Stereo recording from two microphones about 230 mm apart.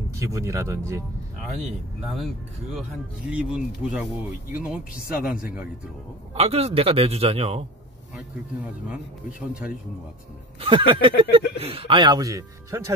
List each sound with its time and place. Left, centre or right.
0.1 s speech: centre
2.1 s speech: centre
6.3 s a man's voice: right
10.9 s a man's voice: right